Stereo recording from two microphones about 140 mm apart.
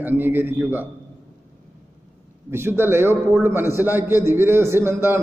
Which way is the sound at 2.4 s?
15° right (ahead or behind).